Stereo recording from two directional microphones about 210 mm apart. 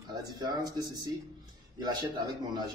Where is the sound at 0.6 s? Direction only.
20° right (ahead or behind).